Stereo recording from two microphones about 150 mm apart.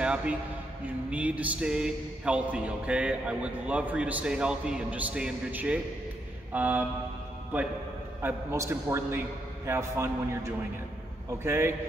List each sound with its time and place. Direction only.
0.0 s a man's voice: 5° right (ahead or behind)
8.2 s a man's voice: 15° right (ahead or behind)